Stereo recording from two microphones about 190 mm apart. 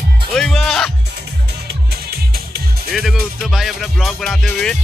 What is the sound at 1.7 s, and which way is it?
Music, 55° right (ahead or behind).